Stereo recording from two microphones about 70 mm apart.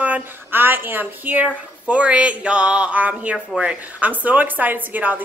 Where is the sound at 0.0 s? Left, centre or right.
Right.